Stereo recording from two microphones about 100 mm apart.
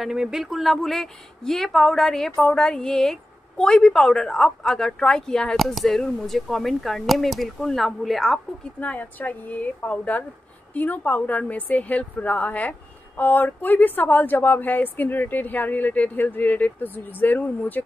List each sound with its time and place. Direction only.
0.0 s speech: 5° right (ahead or behind)
8.7 s a woman's voice: 15° left (ahead or behind)